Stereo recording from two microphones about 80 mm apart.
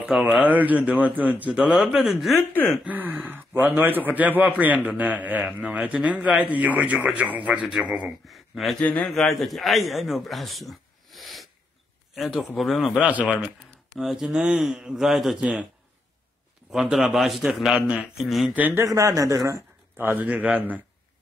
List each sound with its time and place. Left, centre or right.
0.1 s speech: centre
0.4 s a man's voice: centre
1.6 s a man's voice: centre
2.8 s a man's voice: right
8.3 s speech: centre
8.7 s a man's voice: centre
9.1 s a man's voice: centre
13.0 s speech: centre
13.9 s a man's voice: centre
16.7 s a man's voice: centre
18.2 s a man's voice: centre
18.5 s a man's voice: right
18.9 s speech: right
20.0 s a man's voice: right